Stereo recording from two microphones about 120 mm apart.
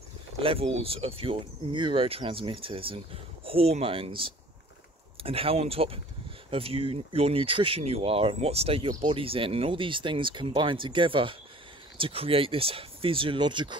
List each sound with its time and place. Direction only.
0.4 s speech: 50° right (ahead or behind)